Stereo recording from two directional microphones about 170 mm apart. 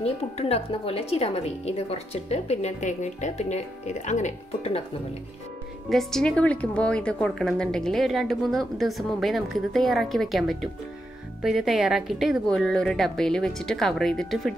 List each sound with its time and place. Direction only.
0.0 s a woman's voice: 35° left (ahead or behind)
5.9 s a woman's voice: centre (ahead or behind)